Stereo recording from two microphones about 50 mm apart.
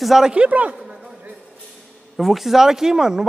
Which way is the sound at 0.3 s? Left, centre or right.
Right.